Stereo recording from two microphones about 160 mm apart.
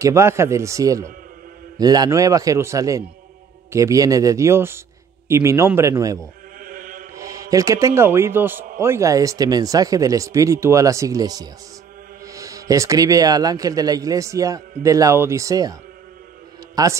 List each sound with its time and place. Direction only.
0.0 s a man's voice: 15° right (ahead or behind)
6.6 s mantra: 60° right (ahead or behind)
7.2 s a man's voice: 20° right (ahead or behind)
16.7 s a man's voice: 20° right (ahead or behind)